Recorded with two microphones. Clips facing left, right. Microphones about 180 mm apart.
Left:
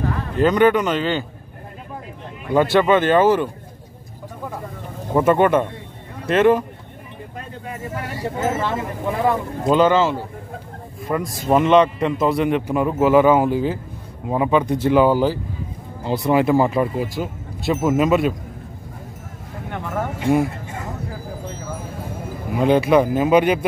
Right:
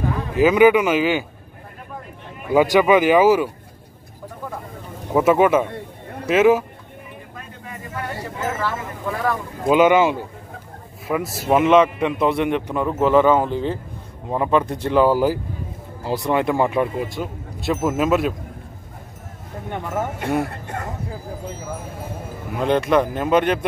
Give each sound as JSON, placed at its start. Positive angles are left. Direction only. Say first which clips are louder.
{"t": 0.3, "sound": "speech", "louder": "right 2 dB", "side_deg": -5}
{"t": 2.4, "sound": "speech", "louder": "right 1 dB", "side_deg": -10}
{"t": 5.1, "sound": "a man's voice", "louder": "even", "side_deg": -5}
{"t": 7.3, "sound": "a sound", "louder": "left 7 dB", "side_deg": 30}
{"t": 8.4, "sound": "speech", "louder": "left 3 dB", "side_deg": 20}
{"t": 9.7, "sound": "a man's voice", "louder": "right 1 dB", "side_deg": -10}
{"t": 20.4, "sound": "a sound", "louder": "left 1 dB", "side_deg": -60}
{"t": 22.5, "sound": "a man's voice", "louder": "left 3 dB", "side_deg": 5}